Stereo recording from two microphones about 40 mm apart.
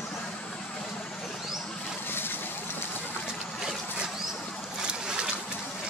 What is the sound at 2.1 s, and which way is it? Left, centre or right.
Vehicle, left.